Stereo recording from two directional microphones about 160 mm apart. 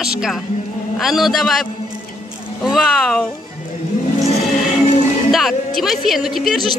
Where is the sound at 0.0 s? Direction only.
5° right (ahead or behind).